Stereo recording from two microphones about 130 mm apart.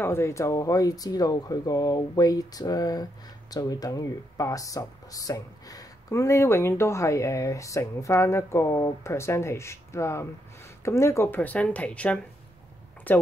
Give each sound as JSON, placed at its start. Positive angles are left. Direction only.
{"t": 0.0, "sound": "speech", "side_deg": 20}